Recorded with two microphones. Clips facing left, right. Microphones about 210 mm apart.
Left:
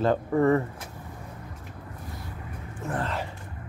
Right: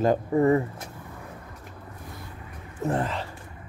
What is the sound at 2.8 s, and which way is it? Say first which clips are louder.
Speech: right 6 dB; 40° right (ahead or behind).